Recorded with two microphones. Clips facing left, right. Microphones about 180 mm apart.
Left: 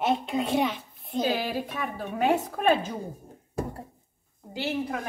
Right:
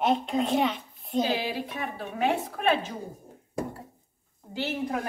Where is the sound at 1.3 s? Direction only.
45° left (ahead or behind).